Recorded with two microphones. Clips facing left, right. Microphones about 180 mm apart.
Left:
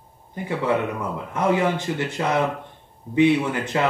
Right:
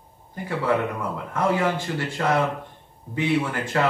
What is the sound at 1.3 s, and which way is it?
Speech, 20° left (ahead or behind).